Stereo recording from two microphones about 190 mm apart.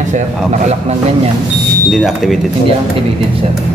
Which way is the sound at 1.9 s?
Centre (ahead or behind).